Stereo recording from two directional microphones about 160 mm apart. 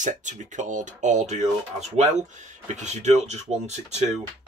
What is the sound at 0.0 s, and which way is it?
Speech, 50° right (ahead or behind).